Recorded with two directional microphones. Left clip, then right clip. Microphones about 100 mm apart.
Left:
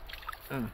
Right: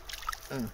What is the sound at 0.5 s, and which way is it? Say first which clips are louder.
Speech: left 4 dB; 35° left (ahead or behind).